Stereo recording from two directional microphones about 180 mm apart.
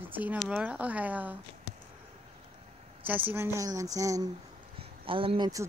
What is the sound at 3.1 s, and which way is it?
Speech, 10° right (ahead or behind).